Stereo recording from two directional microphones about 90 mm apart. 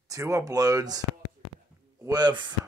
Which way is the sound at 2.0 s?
50° right (ahead or behind).